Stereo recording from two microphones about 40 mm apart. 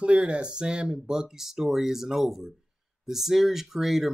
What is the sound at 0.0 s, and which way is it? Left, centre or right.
Speech, right.